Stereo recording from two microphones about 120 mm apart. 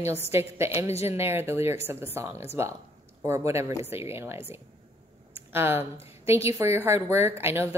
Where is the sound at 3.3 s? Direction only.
25° right (ahead or behind).